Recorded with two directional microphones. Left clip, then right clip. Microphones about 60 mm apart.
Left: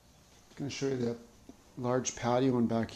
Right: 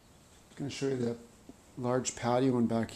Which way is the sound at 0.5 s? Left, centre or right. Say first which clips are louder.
Even; centre.